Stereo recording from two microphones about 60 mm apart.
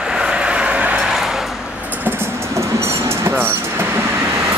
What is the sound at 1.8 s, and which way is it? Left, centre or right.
Train, right.